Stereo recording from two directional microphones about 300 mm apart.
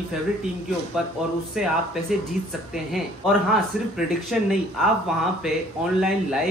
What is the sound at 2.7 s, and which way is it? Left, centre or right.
Speech, centre.